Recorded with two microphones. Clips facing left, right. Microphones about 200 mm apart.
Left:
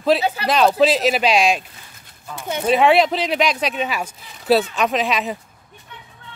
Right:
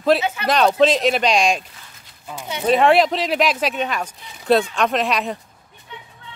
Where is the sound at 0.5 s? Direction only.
5° left (ahead or behind).